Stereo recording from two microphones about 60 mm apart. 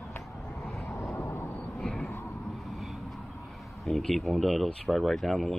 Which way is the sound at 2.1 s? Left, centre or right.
Left.